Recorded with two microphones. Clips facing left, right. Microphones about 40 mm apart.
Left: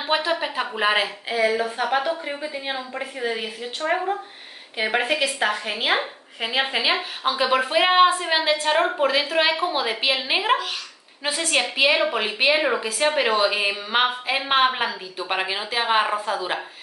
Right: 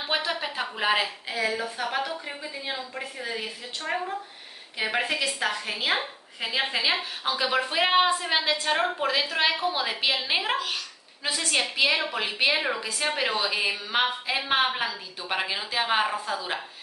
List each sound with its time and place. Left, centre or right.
0.0 s a woman's voice: centre